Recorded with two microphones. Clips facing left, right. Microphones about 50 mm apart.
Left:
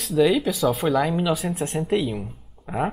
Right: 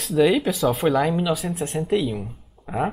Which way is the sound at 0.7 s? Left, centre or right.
Centre.